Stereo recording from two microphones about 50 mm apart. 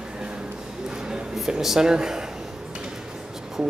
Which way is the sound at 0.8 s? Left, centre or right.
Centre.